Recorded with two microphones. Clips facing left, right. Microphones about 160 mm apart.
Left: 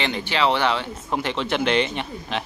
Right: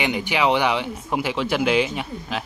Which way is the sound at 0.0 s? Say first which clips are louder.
Right 1 dB; 10° right (ahead or behind).